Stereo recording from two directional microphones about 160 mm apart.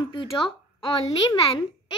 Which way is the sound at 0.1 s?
30° left (ahead or behind).